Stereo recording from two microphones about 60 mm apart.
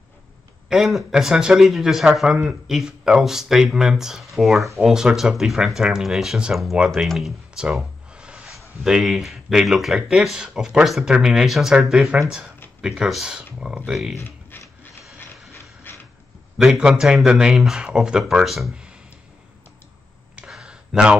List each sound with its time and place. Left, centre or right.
0.7 s speech: centre
8.1 s music: centre
8.5 s speech: centre
12.1 s speech: centre
12.8 s speech: centre
13.9 s speech: centre
15.9 s a sound: left
16.6 s speech: centre
20.5 s a sound: centre